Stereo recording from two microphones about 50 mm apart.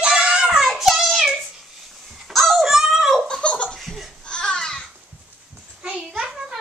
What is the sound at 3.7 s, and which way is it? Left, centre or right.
Laughter, centre.